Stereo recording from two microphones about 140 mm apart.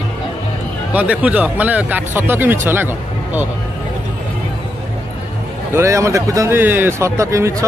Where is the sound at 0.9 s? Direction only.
10° right (ahead or behind).